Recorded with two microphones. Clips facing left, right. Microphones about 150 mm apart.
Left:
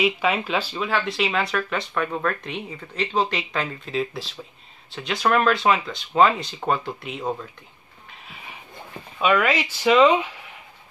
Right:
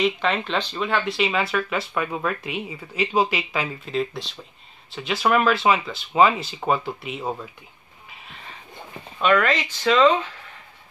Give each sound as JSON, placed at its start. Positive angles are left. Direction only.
{"t": 0.0, "sound": "speech", "side_deg": 10}
{"t": 8.1, "sound": "a sound", "side_deg": 5}
{"t": 9.2, "sound": "speech", "side_deg": 10}